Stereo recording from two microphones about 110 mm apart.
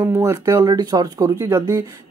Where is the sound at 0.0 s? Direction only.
30° right (ahead or behind).